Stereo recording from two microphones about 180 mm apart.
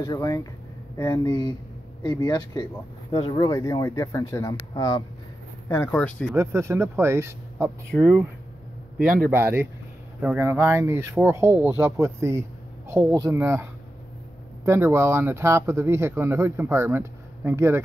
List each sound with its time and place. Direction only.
0.0 s speech: 20° left (ahead or behind)
6.3 s speech: 15° right (ahead or behind)
7.9 s speech: 5° left (ahead or behind)
9.0 s speech: 50° right (ahead or behind)
9.3 s speech: 10° right (ahead or behind)